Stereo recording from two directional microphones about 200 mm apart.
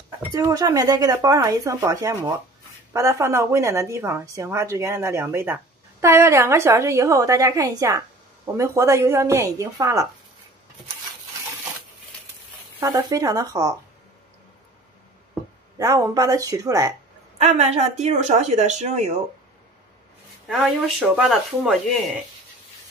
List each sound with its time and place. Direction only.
0.3 s a woman's voice: 15° right (ahead or behind)
12.8 s a woman's voice: 15° right (ahead or behind)
15.8 s a woman's voice: 15° right (ahead or behind)
17.4 s a woman's voice: 35° right (ahead or behind)
20.4 s speech: centre (ahead or behind)